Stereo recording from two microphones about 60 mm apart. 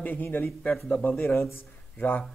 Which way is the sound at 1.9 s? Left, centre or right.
Left.